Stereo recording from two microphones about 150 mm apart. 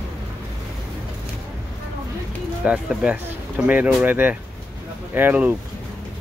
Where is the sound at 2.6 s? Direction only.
10° right (ahead or behind).